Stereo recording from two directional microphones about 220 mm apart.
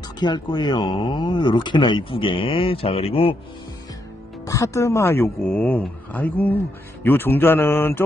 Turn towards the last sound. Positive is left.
turn(degrees=10)  # may be behind; listen again after turning